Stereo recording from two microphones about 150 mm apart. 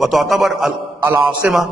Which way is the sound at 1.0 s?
15° right (ahead or behind).